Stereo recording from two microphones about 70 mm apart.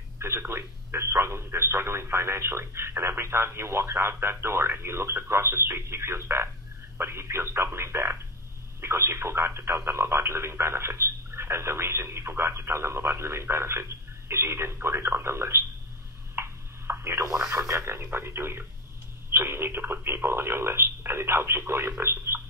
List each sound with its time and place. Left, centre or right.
0.2 s speech: right
16.3 s a sound: right
17.2 s speech: right